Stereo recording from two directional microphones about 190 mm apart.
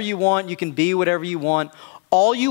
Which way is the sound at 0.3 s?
10° left (ahead or behind).